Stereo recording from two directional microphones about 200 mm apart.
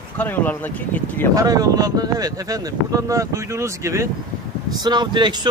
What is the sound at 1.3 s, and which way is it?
Speech, 20° right (ahead or behind).